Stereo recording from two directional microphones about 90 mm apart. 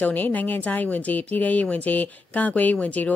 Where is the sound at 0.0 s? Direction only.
20° left (ahead or behind).